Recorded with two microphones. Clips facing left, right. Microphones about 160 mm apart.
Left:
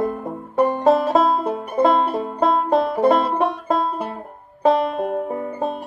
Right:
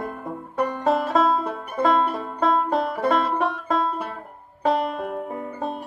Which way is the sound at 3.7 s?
35° left (ahead or behind).